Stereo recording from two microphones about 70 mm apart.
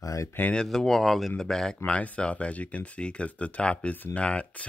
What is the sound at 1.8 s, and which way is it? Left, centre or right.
Speech, centre.